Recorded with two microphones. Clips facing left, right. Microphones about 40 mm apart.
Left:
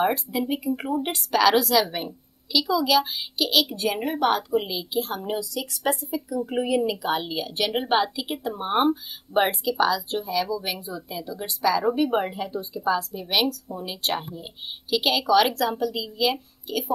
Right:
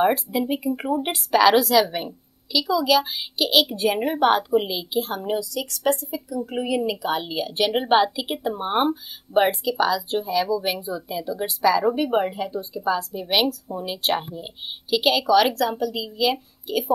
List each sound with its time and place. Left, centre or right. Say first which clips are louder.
0.0 s speech: right 3 dB; centre; by 4.5 s right
4.5 s speech: right 3 dB; centre
14.9 s speech: right 2 dB; centre